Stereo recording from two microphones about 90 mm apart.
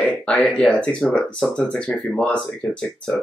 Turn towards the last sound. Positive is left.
turn(degrees=10)  # may be behind; listen again after turning